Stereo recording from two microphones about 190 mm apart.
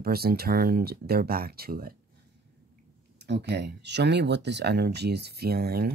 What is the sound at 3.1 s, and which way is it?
Speech, 65° right (ahead or behind).